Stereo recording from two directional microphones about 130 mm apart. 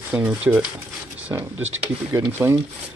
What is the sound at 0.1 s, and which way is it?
Speech, 10° right (ahead or behind).